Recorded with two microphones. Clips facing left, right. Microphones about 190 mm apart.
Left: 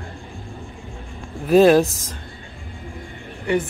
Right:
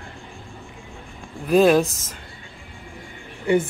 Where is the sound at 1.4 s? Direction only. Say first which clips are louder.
Left 3 dB; centre (ahead or behind).